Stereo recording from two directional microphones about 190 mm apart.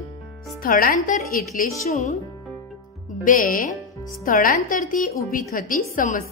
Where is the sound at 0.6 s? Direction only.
50° left (ahead or behind).